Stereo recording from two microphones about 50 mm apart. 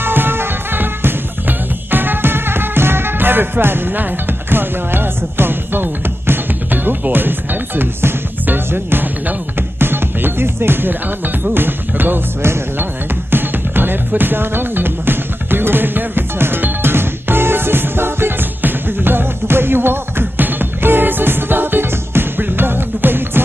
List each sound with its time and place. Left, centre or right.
0.0 s music: right
12.4 s music: right
12.7 s music: right